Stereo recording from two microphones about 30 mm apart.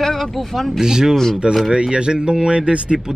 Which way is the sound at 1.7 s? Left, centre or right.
Right.